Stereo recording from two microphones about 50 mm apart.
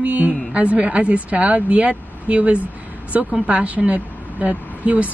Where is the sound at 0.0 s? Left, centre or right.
Right.